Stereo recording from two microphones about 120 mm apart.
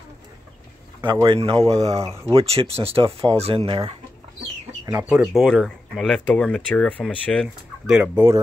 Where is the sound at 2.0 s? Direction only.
20° right (ahead or behind).